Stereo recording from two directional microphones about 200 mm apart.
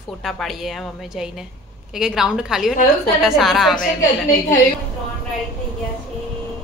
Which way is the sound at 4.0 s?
40° left (ahead or behind).